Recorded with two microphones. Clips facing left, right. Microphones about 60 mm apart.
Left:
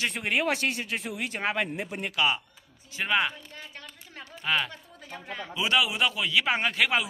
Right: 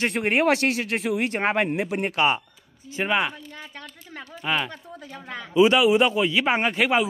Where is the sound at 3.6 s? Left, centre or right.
Right.